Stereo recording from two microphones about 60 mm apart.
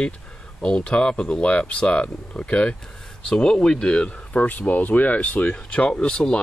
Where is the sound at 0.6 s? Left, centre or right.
Centre.